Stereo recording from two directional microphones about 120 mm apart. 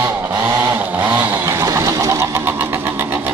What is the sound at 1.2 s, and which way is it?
Vehicle, 20° right (ahead or behind).